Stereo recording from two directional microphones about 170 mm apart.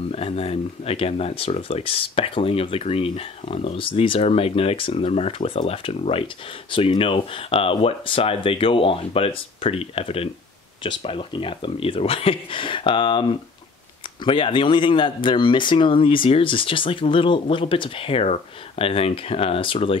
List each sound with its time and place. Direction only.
0.1 s speech: 35° left (ahead or behind)